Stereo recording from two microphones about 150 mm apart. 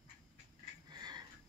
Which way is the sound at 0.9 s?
30° right (ahead or behind).